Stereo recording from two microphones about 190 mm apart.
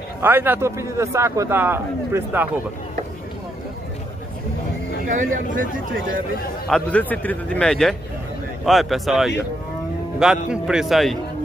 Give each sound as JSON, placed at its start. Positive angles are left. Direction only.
{"t": 0.2, "sound": "a man's voice", "side_deg": -10}
{"t": 5.0, "sound": "speech", "side_deg": -45}
{"t": 6.7, "sound": "a man's voice", "side_deg": 5}